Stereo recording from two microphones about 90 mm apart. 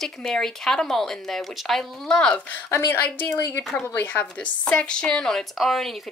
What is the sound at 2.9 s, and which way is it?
Speech, 25° left (ahead or behind).